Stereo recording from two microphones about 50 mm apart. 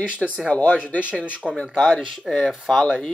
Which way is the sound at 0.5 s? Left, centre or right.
Left.